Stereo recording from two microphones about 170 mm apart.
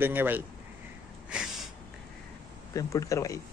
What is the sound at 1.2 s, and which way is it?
Snort, 5° right (ahead or behind).